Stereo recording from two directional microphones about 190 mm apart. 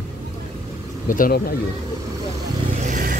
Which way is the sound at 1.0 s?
45° left (ahead or behind).